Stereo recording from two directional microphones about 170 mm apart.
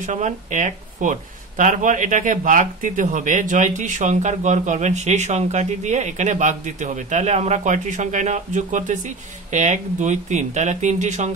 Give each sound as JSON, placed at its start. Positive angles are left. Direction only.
{"t": 0.0, "sound": "speech", "side_deg": -45}